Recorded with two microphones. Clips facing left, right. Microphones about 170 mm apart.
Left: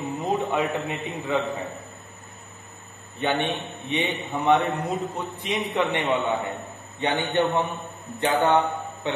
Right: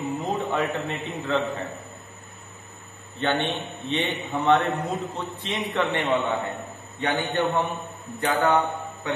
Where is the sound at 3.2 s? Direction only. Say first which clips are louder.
Even; 15° left (ahead or behind).